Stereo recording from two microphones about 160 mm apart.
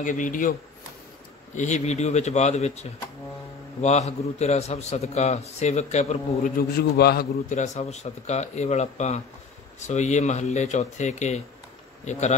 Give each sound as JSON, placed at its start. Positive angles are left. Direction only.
{"t": 0.0, "sound": "a man's voice", "side_deg": 55}
{"t": 6.5, "sound": "a man's voice", "side_deg": 80}
{"t": 7.4, "sound": "a man's voice", "side_deg": 45}